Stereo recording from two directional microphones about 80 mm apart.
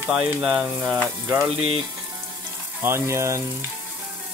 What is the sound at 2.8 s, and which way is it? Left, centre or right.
Speech, right.